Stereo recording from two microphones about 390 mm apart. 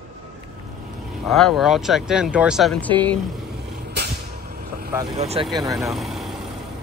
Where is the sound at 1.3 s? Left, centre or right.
Centre.